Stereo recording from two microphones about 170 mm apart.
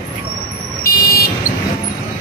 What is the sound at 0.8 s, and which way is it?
Vehicle, 60° left (ahead or behind).